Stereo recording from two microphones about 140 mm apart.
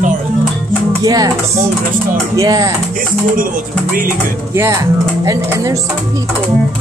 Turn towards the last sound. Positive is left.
turn(degrees=-25)  # may be behind; listen again after turning